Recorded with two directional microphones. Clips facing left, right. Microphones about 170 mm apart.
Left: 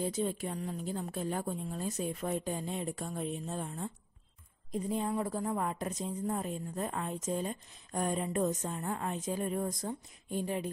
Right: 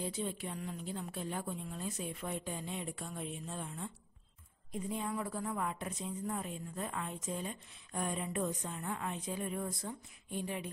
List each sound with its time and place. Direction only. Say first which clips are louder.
0.0 s a woman's voice: left 5 dB; 45° left (ahead or behind)